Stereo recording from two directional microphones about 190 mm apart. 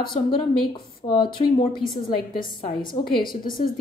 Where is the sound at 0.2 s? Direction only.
35° left (ahead or behind).